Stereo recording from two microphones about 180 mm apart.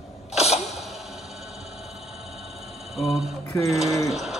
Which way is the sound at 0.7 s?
Centre (ahead or behind).